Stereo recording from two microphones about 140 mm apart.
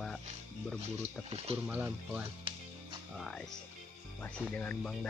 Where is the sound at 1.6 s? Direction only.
10° right (ahead or behind).